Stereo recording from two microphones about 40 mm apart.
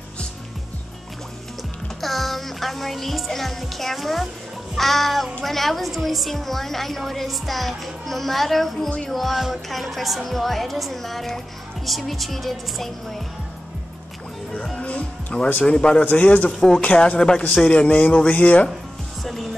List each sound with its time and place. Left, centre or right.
2.0 s a woman's voice: centre
14.8 s music: left
15.6 s speech: left
16.0 s speech: left
17.6 s speech: left